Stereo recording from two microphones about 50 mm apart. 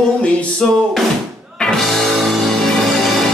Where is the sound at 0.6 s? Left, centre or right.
Centre.